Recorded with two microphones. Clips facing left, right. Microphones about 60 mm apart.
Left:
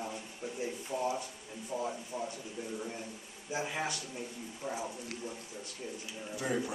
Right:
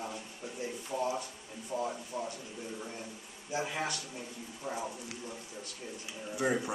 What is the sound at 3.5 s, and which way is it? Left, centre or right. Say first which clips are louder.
A man's voice: right 1 dB; centre.